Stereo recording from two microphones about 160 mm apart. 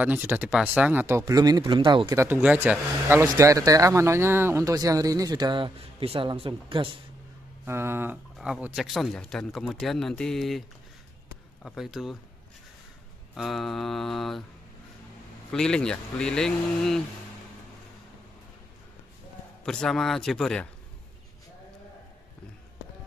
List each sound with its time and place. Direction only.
0.0 s speech: 10° right (ahead or behind); by 2.2 s 25° right (ahead or behind)
2.2 s speech: 10° right (ahead or behind); by 6.9 s 35° right (ahead or behind)
7.6 s speech: 15° right (ahead or behind); by 10.6 s centre (ahead or behind)
11.6 s speech: centre (ahead or behind)
13.3 s speech: centre (ahead or behind)
15.5 s speech: 5° left (ahead or behind)
19.6 s speech: 5° left (ahead or behind)